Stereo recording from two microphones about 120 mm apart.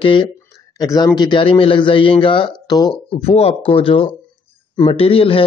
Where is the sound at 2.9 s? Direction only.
55° left (ahead or behind).